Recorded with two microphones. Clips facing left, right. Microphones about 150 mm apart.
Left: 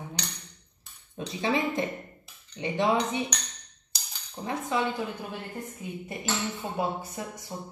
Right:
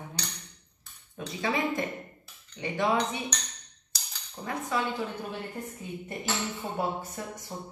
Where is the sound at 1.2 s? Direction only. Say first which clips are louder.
Left 2 dB; 25° left (ahead or behind).